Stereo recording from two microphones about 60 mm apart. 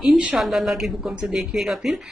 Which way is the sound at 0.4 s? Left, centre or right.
Centre.